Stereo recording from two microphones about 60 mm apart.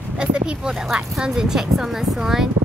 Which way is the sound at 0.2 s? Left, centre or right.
Centre.